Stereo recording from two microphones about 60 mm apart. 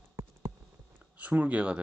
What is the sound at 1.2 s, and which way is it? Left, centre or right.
Speech, right.